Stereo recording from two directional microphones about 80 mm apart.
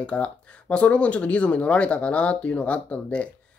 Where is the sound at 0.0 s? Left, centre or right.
Centre.